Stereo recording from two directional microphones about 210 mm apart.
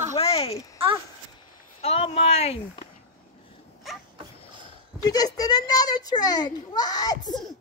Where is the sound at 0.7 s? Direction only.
25° right (ahead or behind).